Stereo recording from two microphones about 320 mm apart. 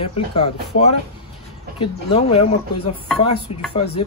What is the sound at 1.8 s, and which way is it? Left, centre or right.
Speech, centre.